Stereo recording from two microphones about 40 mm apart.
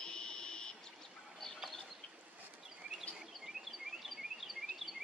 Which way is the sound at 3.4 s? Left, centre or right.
Centre.